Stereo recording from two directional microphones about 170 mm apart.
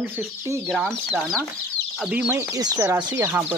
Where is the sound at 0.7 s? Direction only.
Centre (ahead or behind).